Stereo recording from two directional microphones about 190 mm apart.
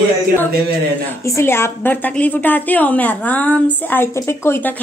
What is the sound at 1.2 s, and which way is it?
A woman's voice, 15° left (ahead or behind).